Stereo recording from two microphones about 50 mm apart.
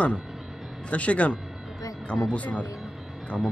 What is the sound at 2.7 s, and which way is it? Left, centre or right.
Music, centre.